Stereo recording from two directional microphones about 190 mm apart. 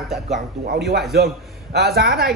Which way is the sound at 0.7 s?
60° right (ahead or behind).